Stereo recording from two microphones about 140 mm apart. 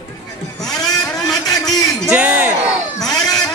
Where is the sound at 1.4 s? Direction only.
25° left (ahead or behind).